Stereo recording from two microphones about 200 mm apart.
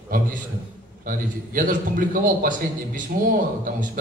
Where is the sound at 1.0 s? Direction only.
45° right (ahead or behind).